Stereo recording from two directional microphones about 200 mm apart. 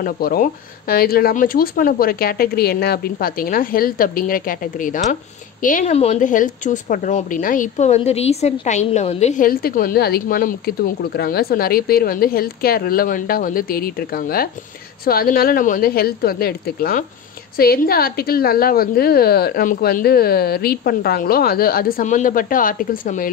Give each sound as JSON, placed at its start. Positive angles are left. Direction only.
{"t": 0.0, "sound": "speech", "side_deg": 45}